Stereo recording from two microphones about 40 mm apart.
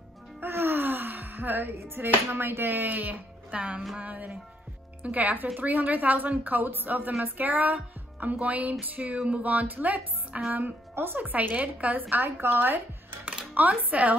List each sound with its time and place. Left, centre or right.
0.4 s music: right
4.0 s a woman's voice: right
12.4 s speech: right